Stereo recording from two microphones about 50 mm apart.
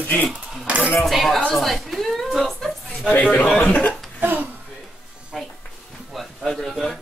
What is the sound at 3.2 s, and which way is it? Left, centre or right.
Speech, left.